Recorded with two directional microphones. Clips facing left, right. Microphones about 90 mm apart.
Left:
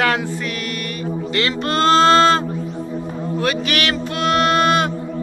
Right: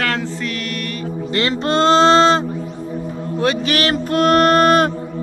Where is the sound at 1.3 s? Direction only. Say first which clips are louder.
Right 3 dB; 30° right (ahead or behind); by 4.9 s 45° right (ahead or behind).